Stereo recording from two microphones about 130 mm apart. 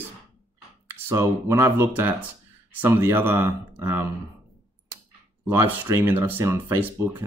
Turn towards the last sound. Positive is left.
turn(degrees=-15)  # may be behind; listen again after turning